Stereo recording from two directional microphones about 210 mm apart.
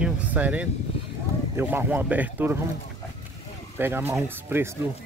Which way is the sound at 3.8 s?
10° right (ahead or behind).